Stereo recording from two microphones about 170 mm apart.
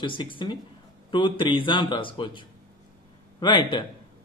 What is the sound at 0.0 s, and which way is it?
A man's voice, 30° left (ahead or behind).